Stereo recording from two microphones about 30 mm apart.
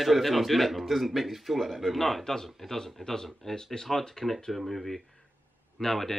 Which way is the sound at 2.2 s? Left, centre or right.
Centre.